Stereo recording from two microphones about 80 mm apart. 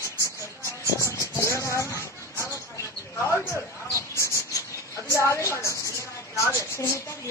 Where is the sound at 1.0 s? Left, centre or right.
Left.